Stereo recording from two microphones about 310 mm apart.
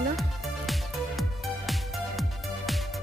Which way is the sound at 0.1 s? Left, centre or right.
Centre.